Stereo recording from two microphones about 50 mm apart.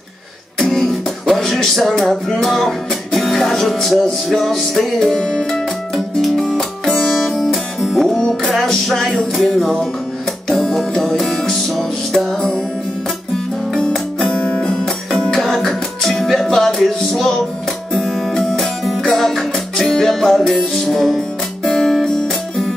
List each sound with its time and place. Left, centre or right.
0.6 s music: centre
5.1 s music: centre
6.8 s music: centre
14.2 s music: centre
15.3 s music: centre
21.6 s guitar: centre